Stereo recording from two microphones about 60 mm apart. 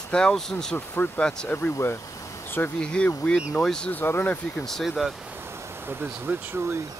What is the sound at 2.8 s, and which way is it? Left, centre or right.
Speech, centre.